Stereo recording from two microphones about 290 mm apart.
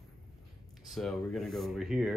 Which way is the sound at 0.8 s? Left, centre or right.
Centre.